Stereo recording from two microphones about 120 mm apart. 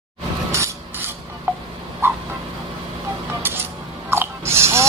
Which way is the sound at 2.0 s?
20° right (ahead or behind).